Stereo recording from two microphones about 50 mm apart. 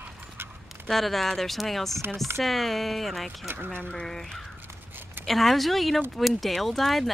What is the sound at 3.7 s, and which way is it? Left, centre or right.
Speech, left.